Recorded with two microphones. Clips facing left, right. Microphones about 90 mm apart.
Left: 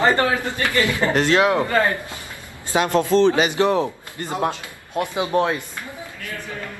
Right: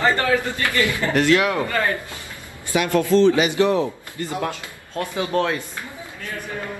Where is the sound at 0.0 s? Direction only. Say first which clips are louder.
Left 1 dB; 25° left (ahead or behind).